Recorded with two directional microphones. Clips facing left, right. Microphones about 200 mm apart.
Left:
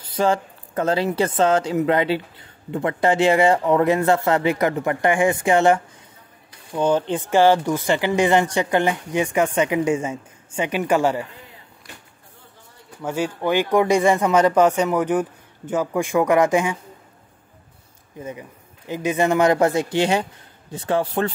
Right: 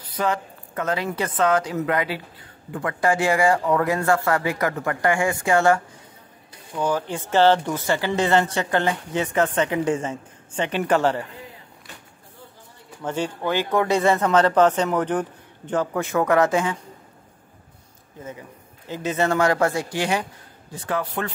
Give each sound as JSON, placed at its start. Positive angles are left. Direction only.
{"t": 0.0, "sound": "speech", "side_deg": 30}
{"t": 6.8, "sound": "speech", "side_deg": 25}
{"t": 13.0, "sound": "speech", "side_deg": 10}
{"t": 18.2, "sound": "speech", "side_deg": 15}